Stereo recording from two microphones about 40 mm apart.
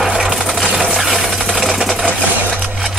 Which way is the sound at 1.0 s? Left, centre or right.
Centre.